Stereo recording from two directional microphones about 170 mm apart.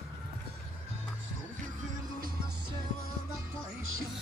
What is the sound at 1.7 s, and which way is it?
Music, 55° right (ahead or behind).